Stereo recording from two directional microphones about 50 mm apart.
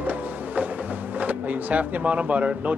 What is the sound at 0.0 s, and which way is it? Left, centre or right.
Music, right.